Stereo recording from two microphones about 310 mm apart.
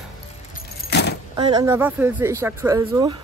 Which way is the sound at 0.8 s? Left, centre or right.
Left.